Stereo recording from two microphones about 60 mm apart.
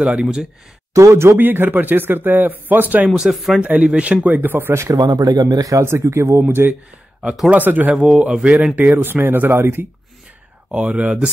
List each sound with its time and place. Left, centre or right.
0.0 s speech: centre
0.9 s speech: right
1.3 s speech: right
3.1 s speech: centre
3.6 s speech: right
4.3 s speech: right
4.8 s speech: right
5.8 s speech: right
7.5 s speech: right
7.9 s speech: centre
8.7 s speech: right
10.7 s speech: right